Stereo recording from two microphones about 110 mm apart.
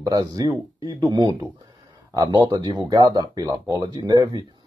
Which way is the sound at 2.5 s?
35° right (ahead or behind).